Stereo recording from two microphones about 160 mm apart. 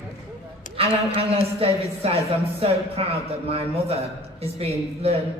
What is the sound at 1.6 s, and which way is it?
Speech, 40° right (ahead or behind).